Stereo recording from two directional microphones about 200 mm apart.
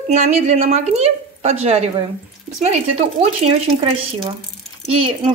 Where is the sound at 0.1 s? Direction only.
35° right (ahead or behind).